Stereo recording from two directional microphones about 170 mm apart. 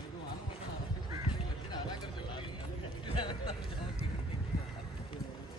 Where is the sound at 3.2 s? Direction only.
30° left (ahead or behind).